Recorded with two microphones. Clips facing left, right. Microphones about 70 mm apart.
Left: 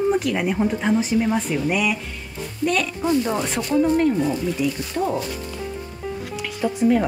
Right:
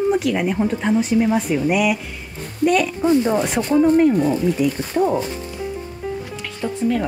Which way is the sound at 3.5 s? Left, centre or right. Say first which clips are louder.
Right 3 dB; right.